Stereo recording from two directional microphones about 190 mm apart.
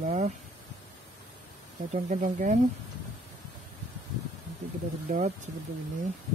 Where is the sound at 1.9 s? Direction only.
40° right (ahead or behind).